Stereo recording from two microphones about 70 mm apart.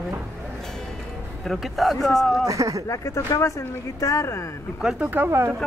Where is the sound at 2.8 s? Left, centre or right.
Left.